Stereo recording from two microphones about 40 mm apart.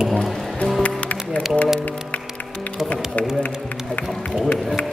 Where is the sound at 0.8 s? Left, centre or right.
Left.